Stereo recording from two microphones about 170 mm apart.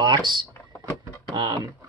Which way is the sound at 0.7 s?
20° left (ahead or behind).